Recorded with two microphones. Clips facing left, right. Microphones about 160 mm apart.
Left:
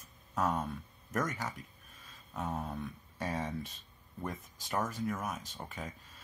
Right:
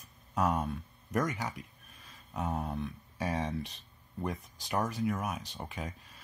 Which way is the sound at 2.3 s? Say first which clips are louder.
Right 3 dB; centre (ahead or behind).